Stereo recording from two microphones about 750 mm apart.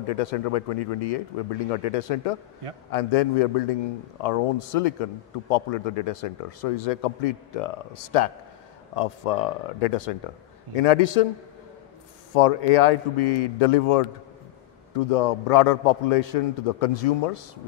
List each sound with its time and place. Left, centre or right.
0.0 s speech: left
12.4 s speech: left